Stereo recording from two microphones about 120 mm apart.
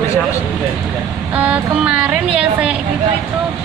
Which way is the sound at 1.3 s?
10° right (ahead or behind).